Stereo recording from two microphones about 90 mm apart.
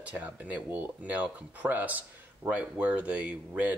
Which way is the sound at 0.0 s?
15° right (ahead or behind).